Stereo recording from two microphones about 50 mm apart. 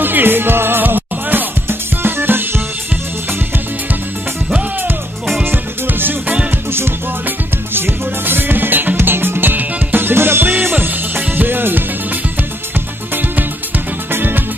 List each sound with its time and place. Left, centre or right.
0.0 s music: right
5.4 s music: right
14.1 s music: right